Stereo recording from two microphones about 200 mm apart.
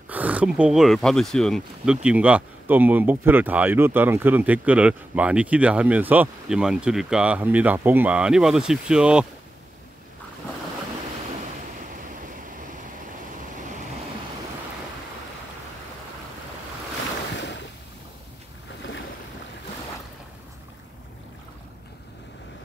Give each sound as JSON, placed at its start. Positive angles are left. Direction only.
{"t": 0.1, "sound": "speech", "side_deg": -5}
{"t": 17.3, "sound": "a sound", "side_deg": 60}
{"t": 18.8, "sound": "boat", "side_deg": 70}